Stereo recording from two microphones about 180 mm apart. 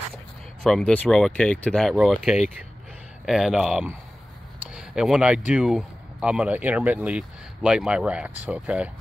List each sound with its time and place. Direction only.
0.7 s speech: 5° left (ahead or behind)